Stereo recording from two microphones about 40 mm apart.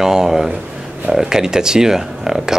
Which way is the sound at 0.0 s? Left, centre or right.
Centre.